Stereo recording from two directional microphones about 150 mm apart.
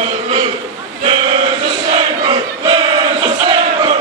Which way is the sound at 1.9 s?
35° right (ahead or behind).